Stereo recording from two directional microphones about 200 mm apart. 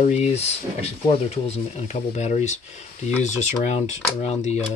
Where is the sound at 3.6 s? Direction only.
35° left (ahead or behind).